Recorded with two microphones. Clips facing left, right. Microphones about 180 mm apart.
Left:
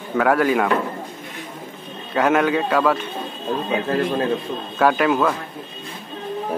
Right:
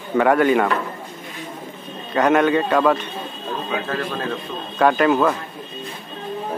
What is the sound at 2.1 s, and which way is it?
Speech, 5° left (ahead or behind).